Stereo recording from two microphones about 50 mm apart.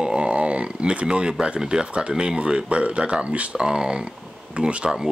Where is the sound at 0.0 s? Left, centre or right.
Right.